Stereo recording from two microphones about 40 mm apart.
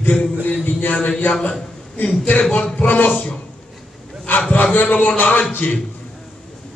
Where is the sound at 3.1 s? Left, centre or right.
Left.